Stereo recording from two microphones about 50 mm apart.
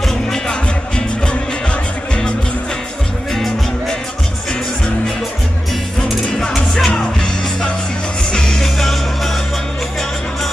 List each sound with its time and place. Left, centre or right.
0.3 s music: centre
6.4 s music: centre
8.3 s music: centre